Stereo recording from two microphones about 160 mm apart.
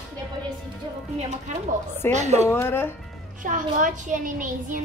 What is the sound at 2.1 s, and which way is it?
Speech, 45° right (ahead or behind).